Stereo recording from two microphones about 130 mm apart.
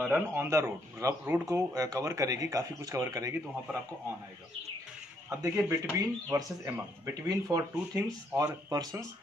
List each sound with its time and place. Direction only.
0.1 s speech: 20° right (ahead or behind)
5.3 s speech: 20° right (ahead or behind)